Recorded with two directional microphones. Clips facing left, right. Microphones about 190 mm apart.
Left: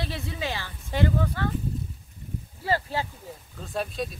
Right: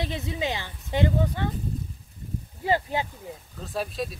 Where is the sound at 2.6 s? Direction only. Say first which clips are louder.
Right 2 dB; 20° right (ahead or behind).